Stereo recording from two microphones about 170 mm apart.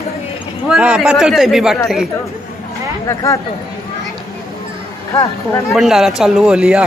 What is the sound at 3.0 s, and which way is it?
Speech, 20° left (ahead or behind).